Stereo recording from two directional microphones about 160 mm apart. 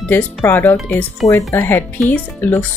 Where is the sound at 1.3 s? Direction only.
20° left (ahead or behind).